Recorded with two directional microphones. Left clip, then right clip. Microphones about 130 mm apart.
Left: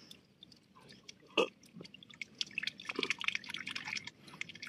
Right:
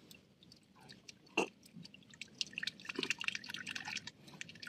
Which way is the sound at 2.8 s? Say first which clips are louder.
Left 3 dB; 20° right (ahead or behind).